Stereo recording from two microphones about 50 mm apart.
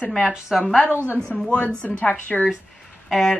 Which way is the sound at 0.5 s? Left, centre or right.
Centre.